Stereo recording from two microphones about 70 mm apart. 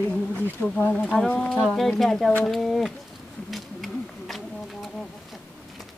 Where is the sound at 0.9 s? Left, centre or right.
Centre.